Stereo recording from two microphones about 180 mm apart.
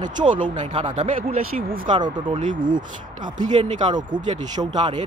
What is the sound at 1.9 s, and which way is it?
Speech, 25° right (ahead or behind).